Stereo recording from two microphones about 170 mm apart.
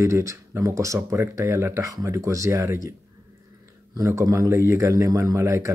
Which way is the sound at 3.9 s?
20° right (ahead or behind).